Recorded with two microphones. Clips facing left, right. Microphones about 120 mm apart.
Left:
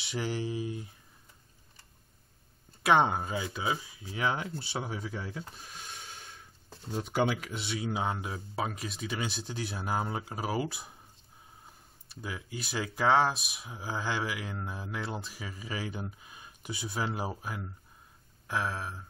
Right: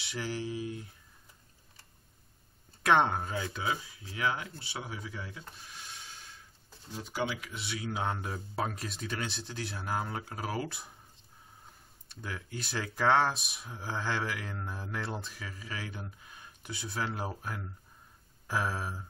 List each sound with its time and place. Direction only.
0.0 s mantra: 25° left (ahead or behind)
2.8 s speech: 10° left (ahead or behind)
3.6 s speech: 20° left (ahead or behind)
5.8 s rub: 55° left (ahead or behind)
7.5 s speech: 25° left (ahead or behind)
8.0 s speech: 5° left (ahead or behind)
12.1 s speech: 10° left (ahead or behind)
15.3 s speech: 15° left (ahead or behind); by 19.0 s 5° right (ahead or behind)